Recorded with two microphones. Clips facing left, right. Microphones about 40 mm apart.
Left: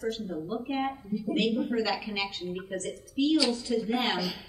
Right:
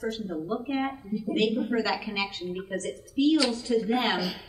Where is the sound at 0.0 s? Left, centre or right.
Centre.